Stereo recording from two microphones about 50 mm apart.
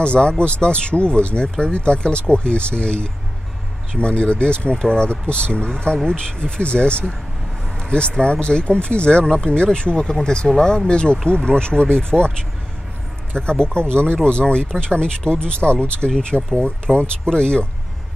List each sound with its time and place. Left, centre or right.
0.0 s speech: centre
8.1 s speech: centre
13.3 s speech: centre
16.0 s speech: centre
16.5 s speech: left